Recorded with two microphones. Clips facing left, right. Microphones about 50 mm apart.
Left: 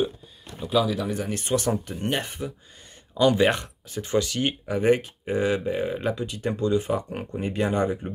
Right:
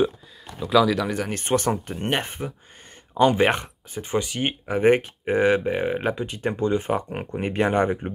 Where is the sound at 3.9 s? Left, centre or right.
Centre; by 7.4 s right.